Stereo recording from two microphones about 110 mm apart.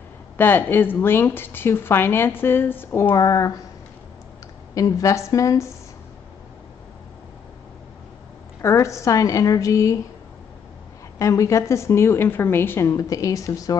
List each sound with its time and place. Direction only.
0.4 s a woman's voice: 20° left (ahead or behind)
3.2 s speech: 35° left (ahead or behind)
4.7 s a woman's voice: 30° left (ahead or behind)
8.6 s a woman's voice: 30° left (ahead or behind)
11.1 s a woman's voice: 30° left (ahead or behind)